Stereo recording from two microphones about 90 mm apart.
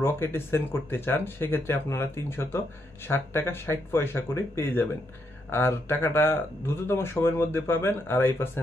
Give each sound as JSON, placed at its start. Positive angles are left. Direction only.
{"t": 0.0, "sound": "speech", "side_deg": 25}